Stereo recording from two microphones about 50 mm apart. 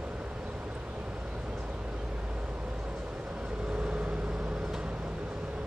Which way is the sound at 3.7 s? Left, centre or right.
Right.